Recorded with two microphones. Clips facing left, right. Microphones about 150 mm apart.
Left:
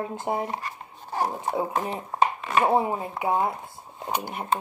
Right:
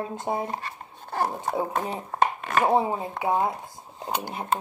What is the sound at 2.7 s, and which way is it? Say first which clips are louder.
Speech: even; 30° right (ahead or behind).